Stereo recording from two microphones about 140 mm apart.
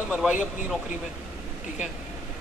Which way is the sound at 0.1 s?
5° right (ahead or behind).